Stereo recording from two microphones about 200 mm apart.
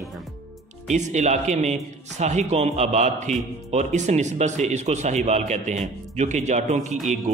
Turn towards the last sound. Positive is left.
turn(degrees=-35)  # may be behind; listen again after turning